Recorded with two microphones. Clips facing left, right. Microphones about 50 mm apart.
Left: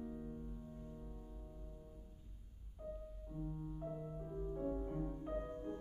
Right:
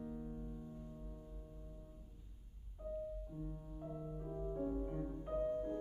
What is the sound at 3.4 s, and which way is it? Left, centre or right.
Music, centre.